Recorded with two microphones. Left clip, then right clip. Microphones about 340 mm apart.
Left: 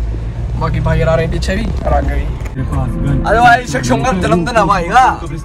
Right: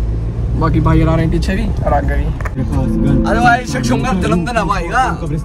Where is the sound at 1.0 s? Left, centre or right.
Centre.